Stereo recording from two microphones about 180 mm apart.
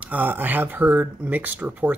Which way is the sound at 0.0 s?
10° right (ahead or behind).